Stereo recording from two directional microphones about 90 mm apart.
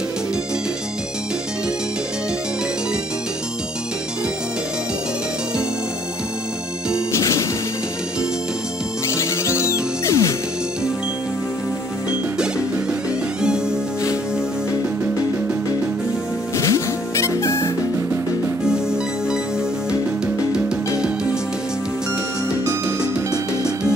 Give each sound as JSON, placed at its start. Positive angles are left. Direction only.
{"t": 7.1, "sound": "music", "side_deg": 35}
{"t": 9.1, "sound": "music", "side_deg": 30}
{"t": 12.1, "sound": "music", "side_deg": -10}
{"t": 16.5, "sound": "music", "side_deg": 35}
{"t": 22.7, "sound": "music", "side_deg": -45}